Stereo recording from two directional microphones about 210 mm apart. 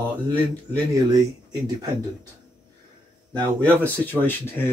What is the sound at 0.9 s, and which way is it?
Speech, 20° right (ahead or behind).